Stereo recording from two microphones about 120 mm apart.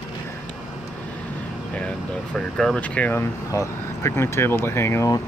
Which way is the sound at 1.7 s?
10° left (ahead or behind).